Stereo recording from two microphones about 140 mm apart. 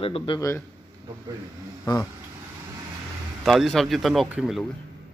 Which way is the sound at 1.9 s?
25° left (ahead or behind).